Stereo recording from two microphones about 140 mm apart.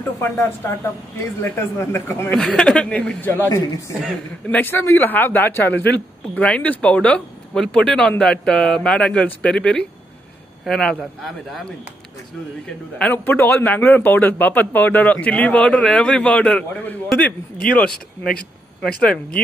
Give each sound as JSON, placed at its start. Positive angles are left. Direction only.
{"t": 0.2, "sound": "a man's voice", "side_deg": 15}
{"t": 2.4, "sound": "a man's voice", "side_deg": 5}
{"t": 3.4, "sound": "a man's voice", "side_deg": 25}
{"t": 4.5, "sound": "a man's voice", "side_deg": 15}
{"t": 13.0, "sound": "a man's voice", "side_deg": 15}